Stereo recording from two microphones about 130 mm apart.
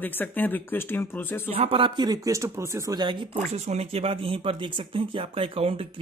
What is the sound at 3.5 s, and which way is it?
Speech, 55° right (ahead or behind).